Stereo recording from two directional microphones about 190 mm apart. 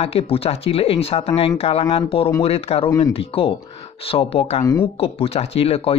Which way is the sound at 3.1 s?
30° left (ahead or behind).